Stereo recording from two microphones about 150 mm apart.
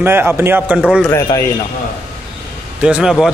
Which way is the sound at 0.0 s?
15° right (ahead or behind).